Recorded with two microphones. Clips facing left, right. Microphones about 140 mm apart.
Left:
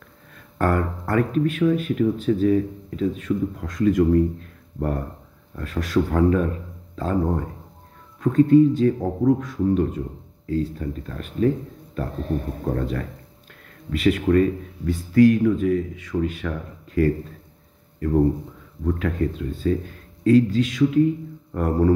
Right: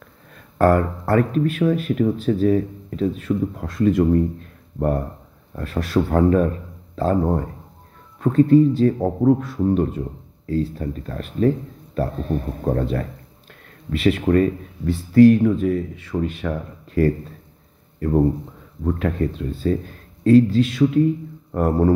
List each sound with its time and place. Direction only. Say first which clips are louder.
0.6 s speech: right 5 dB; 35° right (ahead or behind)
1.8 s speech: right 1 dB; 55° right (ahead or behind)
2.1 s speech: right 1 dB; 35° right (ahead or behind)
14.0 s speech: right 1 dB; 35° right (ahead or behind)
21.5 s mantra: right 2 dB; 35° right (ahead or behind)